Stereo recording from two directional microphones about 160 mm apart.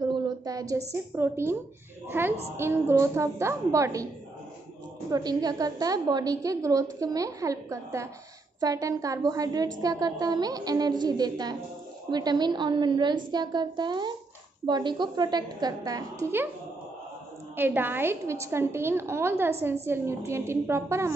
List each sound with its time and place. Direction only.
0.5 s a woman's voice: 20° right (ahead or behind)
5.1 s a woman's voice: 25° right (ahead or behind)
17.6 s a woman's voice: 10° right (ahead or behind)